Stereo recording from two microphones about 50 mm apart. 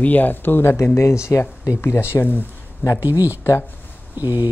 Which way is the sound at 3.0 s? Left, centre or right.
Right.